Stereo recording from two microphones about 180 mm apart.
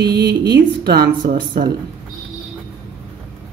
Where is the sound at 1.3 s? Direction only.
50° right (ahead or behind).